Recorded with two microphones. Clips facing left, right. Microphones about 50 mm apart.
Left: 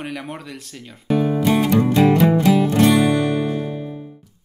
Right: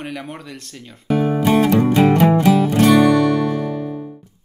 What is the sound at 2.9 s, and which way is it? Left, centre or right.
Music, right.